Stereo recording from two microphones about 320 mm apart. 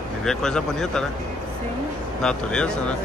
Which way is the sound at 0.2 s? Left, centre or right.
Centre.